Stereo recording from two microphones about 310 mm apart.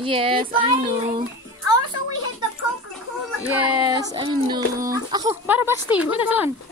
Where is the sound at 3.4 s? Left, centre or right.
Centre.